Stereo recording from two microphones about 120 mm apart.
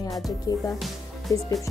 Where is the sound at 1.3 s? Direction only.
30° left (ahead or behind).